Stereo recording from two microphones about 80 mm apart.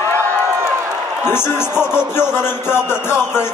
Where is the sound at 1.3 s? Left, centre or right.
Left.